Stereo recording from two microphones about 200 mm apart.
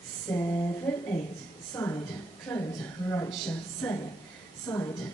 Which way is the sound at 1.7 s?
15° left (ahead or behind).